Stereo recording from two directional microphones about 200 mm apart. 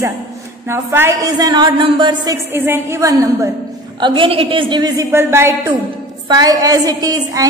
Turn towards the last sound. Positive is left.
turn(degrees=-20)  # may be behind; listen again after turning